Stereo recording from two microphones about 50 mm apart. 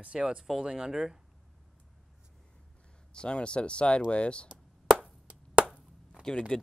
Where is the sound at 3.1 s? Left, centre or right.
Centre.